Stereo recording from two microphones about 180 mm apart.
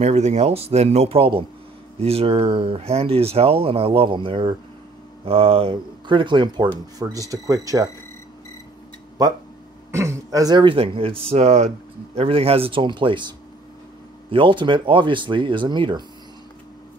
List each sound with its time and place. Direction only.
0.0 s speech: 40° right (ahead or behind); by 7.9 s 20° right (ahead or behind)
9.8 s speech: 15° right (ahead or behind)
14.3 s speech: 25° right (ahead or behind)